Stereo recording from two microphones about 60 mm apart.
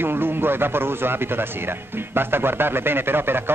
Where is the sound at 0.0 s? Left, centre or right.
Right.